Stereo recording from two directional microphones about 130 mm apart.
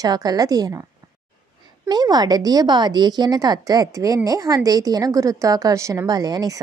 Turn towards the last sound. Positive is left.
turn(degrees=-30)  # may be behind; listen again after turning